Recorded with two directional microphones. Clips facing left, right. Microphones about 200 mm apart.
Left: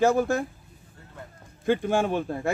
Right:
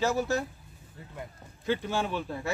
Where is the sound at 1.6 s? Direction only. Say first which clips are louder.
Left 6 dB; 50° left (ahead or behind).